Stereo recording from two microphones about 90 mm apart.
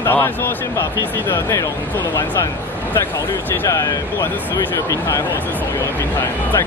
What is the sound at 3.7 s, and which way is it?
Speech, 35° left (ahead or behind).